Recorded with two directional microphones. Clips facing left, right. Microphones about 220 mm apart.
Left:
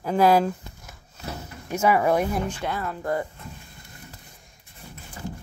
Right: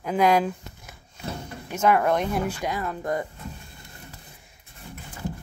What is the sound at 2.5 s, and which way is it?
Speech, 10° right (ahead or behind).